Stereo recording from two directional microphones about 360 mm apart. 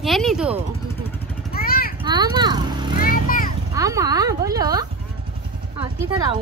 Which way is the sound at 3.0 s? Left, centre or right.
Left.